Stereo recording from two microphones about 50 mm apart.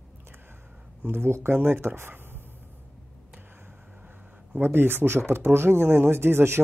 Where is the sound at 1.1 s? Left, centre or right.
Right.